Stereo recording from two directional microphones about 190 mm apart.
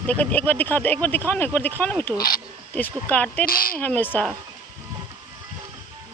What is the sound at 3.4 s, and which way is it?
Speech, 50° left (ahead or behind).